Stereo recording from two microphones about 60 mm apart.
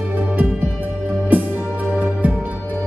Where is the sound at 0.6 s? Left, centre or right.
Right.